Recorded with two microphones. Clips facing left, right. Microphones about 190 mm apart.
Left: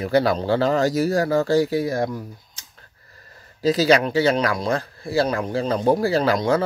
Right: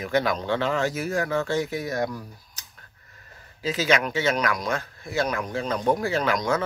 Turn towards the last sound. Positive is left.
turn(degrees=30)  # may be behind; listen again after turning